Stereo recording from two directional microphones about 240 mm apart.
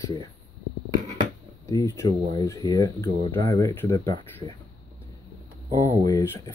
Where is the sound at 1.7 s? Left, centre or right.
Centre.